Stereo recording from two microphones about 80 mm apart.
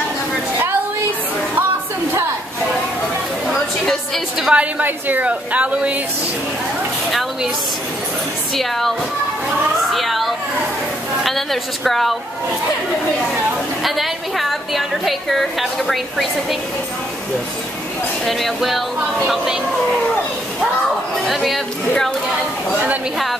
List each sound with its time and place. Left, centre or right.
3.8 s music: centre
4.5 s a woman's voice: centre
8.5 s a woman's voice: centre
9.9 s a woman's voice: centre
13.8 s a woman's voice: centre
18.2 s a woman's voice: centre
21.3 s a woman's voice: centre